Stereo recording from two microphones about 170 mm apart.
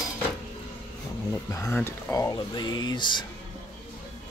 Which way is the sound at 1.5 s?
15° left (ahead or behind).